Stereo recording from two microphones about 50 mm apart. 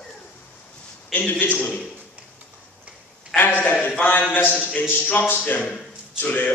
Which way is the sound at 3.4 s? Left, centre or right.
Left.